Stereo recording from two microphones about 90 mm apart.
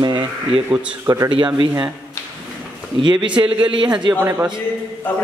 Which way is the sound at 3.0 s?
60° right (ahead or behind).